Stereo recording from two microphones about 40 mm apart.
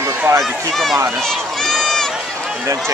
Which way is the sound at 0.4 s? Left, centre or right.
Centre.